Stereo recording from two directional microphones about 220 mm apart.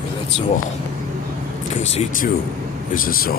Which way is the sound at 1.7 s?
30° left (ahead or behind).